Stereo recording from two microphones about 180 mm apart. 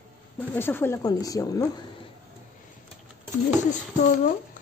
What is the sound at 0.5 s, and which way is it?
Speech, 10° left (ahead or behind).